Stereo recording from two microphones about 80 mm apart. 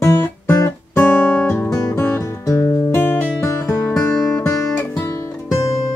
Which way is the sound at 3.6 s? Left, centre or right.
Left.